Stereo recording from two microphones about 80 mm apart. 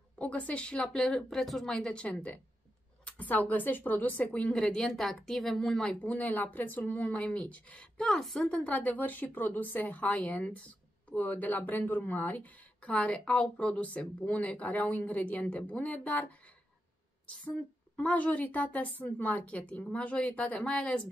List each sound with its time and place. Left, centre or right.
0.2 s a woman's voice: centre
8.0 s a woman's voice: centre
8.4 s speech: centre
17.9 s a woman's voice: centre